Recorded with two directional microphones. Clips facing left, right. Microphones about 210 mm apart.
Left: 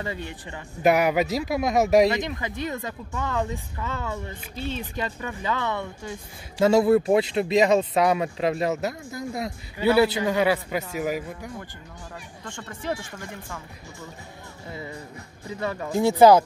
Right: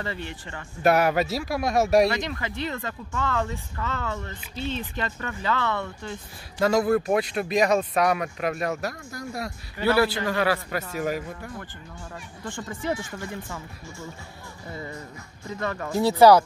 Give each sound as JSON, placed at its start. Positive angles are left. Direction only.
{"t": 0.0, "sound": "speech", "side_deg": 15}
{"t": 6.6, "sound": "speech", "side_deg": 25}
{"t": 12.4, "sound": "speech", "side_deg": -5}
{"t": 14.7, "sound": "speech", "side_deg": 5}